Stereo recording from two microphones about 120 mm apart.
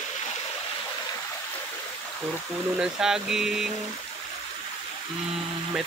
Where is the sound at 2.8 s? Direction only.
5° right (ahead or behind).